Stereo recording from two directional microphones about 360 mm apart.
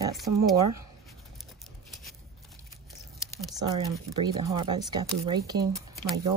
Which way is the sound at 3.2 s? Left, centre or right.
Centre.